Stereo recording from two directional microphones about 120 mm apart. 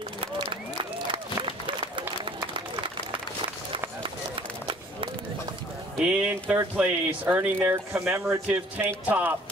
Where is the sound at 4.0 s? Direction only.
45° right (ahead or behind).